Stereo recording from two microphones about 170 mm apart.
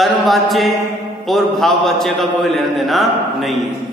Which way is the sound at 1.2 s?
Centre (ahead or behind).